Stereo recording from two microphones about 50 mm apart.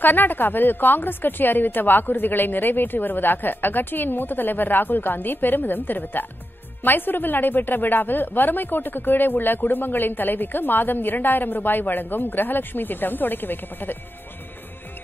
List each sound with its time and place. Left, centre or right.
0.0 s speech: left